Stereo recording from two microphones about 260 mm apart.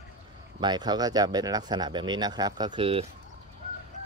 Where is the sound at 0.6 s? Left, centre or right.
Centre.